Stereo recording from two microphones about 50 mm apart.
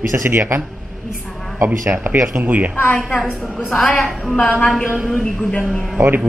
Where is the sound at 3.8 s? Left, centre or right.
Centre.